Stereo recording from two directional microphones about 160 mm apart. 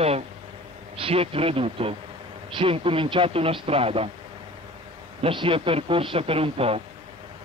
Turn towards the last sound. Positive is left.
turn(degrees=-35)  # may be behind; listen again after turning